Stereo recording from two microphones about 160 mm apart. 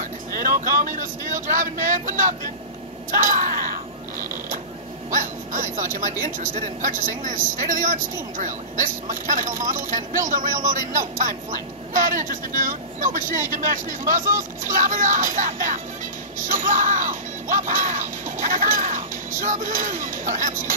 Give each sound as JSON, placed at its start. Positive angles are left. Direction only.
{"t": 0.0, "sound": "speech", "side_deg": -60}
{"t": 5.1, "sound": "a man's voice", "side_deg": -55}
{"t": 16.3, "sound": "music", "side_deg": -55}